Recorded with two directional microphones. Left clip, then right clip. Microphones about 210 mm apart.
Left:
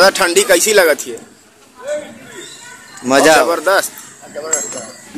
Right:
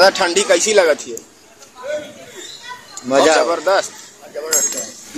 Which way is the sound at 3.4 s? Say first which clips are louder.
Left 2 dB; 15° left (ahead or behind).